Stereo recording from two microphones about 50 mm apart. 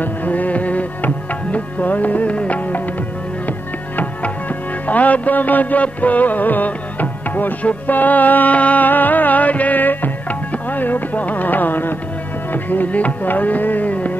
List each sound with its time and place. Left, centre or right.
0.0 s music: left